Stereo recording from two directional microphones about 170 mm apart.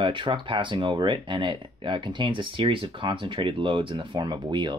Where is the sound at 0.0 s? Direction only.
30° right (ahead or behind).